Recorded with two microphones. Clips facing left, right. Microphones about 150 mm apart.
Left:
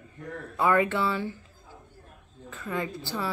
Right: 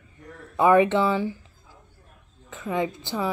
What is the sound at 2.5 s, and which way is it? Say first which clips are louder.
Speech: right 5 dB; 15° right (ahead or behind).